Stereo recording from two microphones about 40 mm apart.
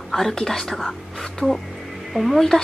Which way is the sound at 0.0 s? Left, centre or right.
Centre.